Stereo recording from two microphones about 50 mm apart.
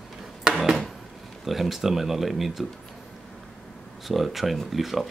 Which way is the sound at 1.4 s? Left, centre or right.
Centre.